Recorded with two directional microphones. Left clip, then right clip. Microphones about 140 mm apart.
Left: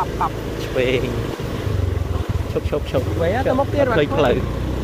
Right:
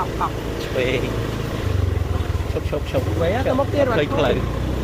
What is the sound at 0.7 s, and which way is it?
Speech, 90° left.